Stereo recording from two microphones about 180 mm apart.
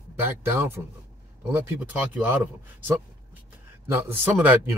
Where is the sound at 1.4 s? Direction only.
10° right (ahead or behind).